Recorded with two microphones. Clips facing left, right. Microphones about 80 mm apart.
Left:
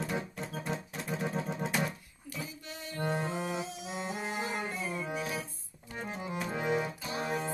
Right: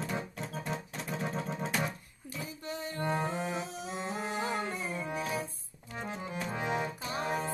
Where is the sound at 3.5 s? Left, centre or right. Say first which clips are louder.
Even; right.